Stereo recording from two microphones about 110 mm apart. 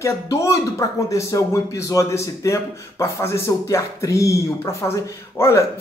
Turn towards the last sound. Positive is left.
turn(degrees=25)  # may be behind; listen again after turning